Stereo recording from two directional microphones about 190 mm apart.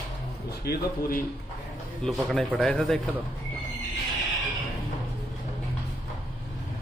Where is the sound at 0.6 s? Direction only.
50° left (ahead or behind).